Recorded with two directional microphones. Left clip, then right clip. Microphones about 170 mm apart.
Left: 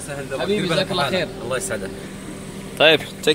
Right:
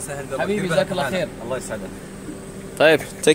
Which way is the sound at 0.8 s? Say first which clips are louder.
Left 1 dB; 45° right (ahead or behind).